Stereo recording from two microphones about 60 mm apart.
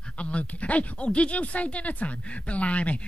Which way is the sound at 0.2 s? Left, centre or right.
Left.